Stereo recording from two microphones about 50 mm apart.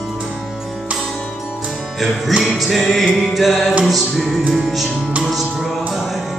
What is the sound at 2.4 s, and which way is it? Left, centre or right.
Music, centre.